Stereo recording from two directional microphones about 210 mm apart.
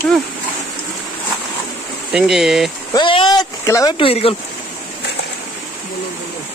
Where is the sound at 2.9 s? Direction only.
20° left (ahead or behind).